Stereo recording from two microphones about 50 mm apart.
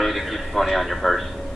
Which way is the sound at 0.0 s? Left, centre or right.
Centre.